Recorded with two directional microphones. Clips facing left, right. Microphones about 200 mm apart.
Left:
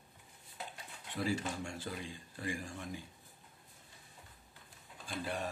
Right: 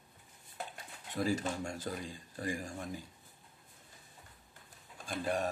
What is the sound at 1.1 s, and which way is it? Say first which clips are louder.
Speech: right 3 dB; 40° right (ahead or behind).